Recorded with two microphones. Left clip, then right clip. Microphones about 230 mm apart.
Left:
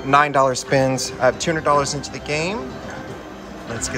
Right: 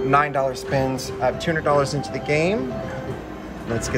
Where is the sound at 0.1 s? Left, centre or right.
Centre.